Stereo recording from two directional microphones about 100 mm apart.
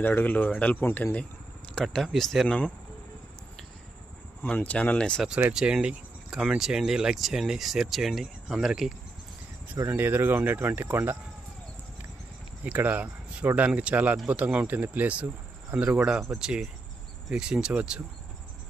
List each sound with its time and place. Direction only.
0.0 s speech: 20° left (ahead or behind)
1.8 s speech: 5° left (ahead or behind)
4.4 s speech: 15° left (ahead or behind)
5.5 s speech: 5° right (ahead or behind)
9.9 s speech: 20° right (ahead or behind)
12.6 s speech: 15° right (ahead or behind)